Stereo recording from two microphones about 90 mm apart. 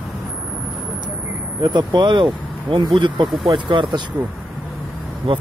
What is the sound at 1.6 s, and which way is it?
Speech, 55° right (ahead or behind).